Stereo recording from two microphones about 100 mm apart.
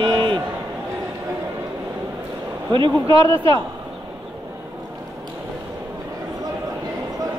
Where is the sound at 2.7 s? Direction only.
55° right (ahead or behind).